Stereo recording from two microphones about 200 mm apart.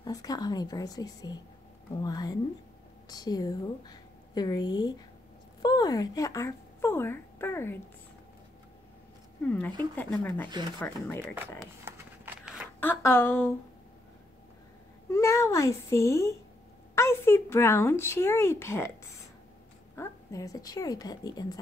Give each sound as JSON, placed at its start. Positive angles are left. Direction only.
{"t": 0.0, "sound": "a woman's voice", "side_deg": 20}
{"t": 9.4, "sound": "speech", "side_deg": 5}
{"t": 11.8, "sound": "a sound", "side_deg": -5}
{"t": 12.8, "sound": "speech", "side_deg": 10}
{"t": 15.0, "sound": "speech", "side_deg": 15}